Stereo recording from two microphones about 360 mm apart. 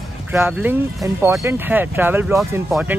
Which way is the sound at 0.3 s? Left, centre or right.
Centre.